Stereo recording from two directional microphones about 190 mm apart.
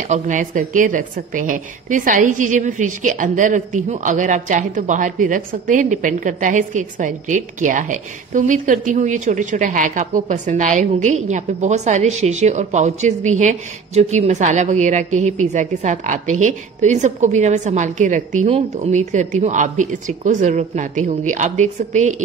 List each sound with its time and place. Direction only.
0.0 s a woman's voice: 40° right (ahead or behind)